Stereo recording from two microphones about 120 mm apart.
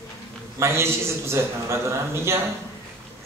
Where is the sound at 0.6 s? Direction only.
20° right (ahead or behind).